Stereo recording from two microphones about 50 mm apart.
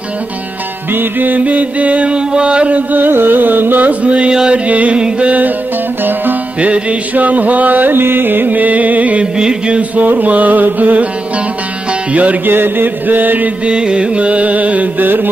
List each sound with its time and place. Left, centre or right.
0.9 s music: right
2.9 s music: right
6.0 s music: right
9.2 s music: centre
9.8 s music: right
12.1 s music: right
12.4 s music: right
13.7 s music: centre; by 15.2 s right